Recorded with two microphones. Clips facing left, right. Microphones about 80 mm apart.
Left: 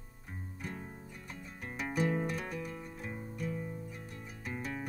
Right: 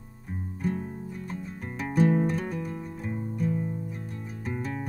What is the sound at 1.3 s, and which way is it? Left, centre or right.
Music, centre.